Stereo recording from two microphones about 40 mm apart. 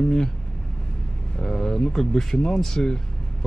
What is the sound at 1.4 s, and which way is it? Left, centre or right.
Speech, centre.